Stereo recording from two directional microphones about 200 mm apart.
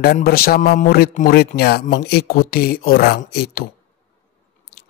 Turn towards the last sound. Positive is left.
turn(degrees=50)  # may be behind; listen again after turning